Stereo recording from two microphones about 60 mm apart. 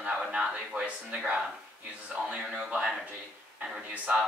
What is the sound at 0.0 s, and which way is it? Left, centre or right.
A woman's voice, centre.